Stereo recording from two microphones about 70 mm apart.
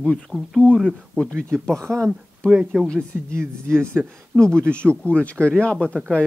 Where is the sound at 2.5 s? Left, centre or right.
Centre.